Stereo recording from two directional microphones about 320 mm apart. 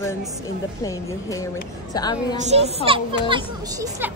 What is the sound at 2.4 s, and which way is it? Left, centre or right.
A child's voice, right.